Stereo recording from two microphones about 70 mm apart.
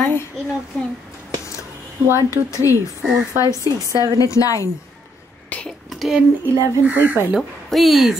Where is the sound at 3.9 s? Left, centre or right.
Right.